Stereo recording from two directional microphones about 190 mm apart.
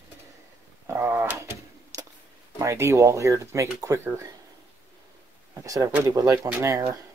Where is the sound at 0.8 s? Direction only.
15° right (ahead or behind).